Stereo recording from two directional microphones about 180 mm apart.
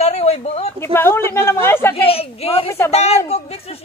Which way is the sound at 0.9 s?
15° left (ahead or behind).